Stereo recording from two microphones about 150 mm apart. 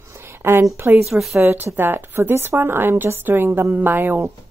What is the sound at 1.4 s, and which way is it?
Speech, 15° right (ahead or behind).